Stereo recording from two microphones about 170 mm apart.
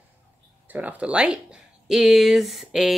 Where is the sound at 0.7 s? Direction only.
10° right (ahead or behind).